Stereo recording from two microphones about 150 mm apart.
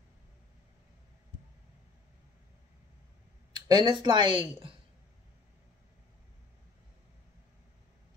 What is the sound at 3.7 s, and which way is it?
Speech, 30° right (ahead or behind).